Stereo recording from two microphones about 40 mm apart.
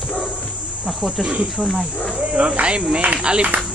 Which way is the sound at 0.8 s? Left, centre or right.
Centre.